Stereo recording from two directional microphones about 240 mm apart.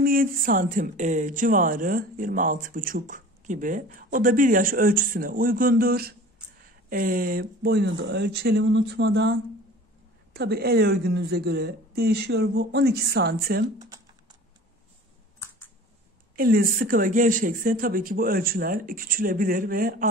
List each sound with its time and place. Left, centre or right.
0.0 s speech: right
13.7 s typing: centre
16.3 s speech: right